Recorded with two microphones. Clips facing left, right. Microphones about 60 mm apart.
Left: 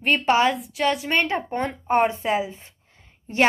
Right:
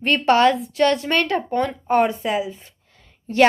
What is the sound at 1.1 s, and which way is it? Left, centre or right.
A woman's voice, left.